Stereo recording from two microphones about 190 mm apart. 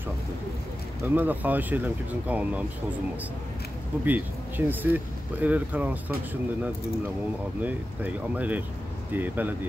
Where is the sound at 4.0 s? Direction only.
10° right (ahead or behind).